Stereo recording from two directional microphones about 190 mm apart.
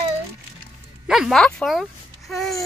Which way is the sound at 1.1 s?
Centre (ahead or behind).